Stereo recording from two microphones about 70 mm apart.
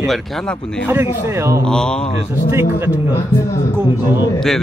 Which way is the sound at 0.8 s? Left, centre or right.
Right.